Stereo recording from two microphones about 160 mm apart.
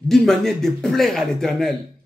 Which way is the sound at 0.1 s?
Centre (ahead or behind).